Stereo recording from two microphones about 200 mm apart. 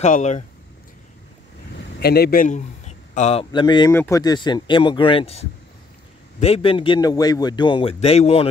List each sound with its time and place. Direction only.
0.0 s speech: 35° left (ahead or behind)
2.0 s a man's voice: 50° left (ahead or behind)
3.2 s speech: 30° left (ahead or behind)